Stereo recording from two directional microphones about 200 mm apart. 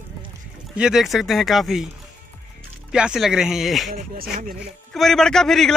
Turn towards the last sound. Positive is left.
turn(degrees=0)  # may be behind; listen again after turning